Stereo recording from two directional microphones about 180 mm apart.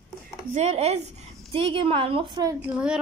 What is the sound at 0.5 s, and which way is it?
A woman's voice, 35° right (ahead or behind).